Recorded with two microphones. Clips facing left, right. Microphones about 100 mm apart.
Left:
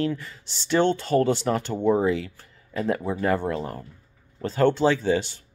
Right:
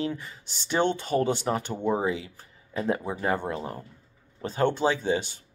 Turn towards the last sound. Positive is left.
turn(degrees=-25)  # may be behind; listen again after turning